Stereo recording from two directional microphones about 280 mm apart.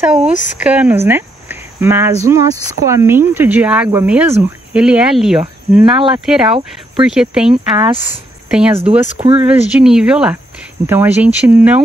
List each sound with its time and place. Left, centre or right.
0.0 s speech: centre
0.3 s speech: left
0.6 s speech: centre